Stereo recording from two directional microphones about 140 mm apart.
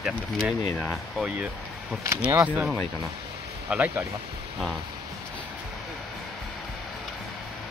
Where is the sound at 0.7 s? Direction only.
5° left (ahead or behind).